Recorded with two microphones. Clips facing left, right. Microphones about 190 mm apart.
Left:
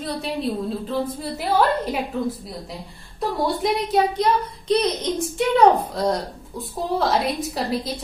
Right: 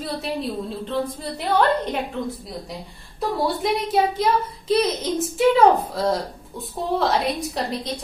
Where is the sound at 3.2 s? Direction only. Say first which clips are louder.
Even; centre (ahead or behind).